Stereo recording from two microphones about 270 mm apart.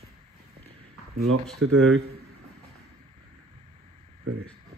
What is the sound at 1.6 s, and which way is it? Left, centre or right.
Speech, right.